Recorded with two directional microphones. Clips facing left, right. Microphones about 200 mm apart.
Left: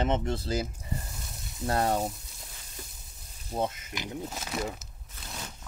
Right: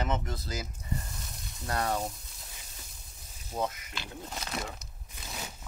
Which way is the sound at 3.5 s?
25° left (ahead or behind).